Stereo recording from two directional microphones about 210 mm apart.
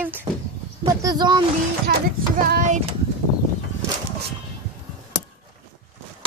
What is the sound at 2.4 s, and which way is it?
Child singing, 40° right (ahead or behind).